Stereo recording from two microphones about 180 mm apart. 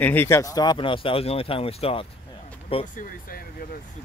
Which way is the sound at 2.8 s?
45° left (ahead or behind).